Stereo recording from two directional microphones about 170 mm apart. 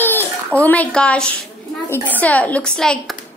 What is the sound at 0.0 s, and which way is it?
A child's voice, 10° left (ahead or behind).